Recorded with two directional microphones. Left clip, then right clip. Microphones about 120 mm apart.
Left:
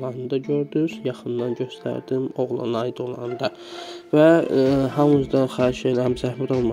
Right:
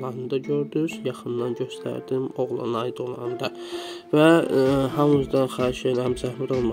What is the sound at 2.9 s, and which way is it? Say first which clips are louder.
A man's voice: left 1 dB; 15° left (ahead or behind).